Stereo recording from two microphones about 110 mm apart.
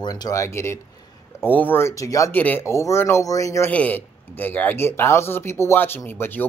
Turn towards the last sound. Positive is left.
turn(degrees=20)  # may be behind; listen again after turning